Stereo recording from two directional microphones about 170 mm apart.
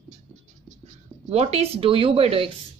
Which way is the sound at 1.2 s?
35° right (ahead or behind).